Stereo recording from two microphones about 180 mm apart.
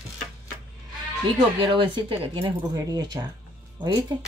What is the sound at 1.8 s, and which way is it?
Speech, 30° right (ahead or behind).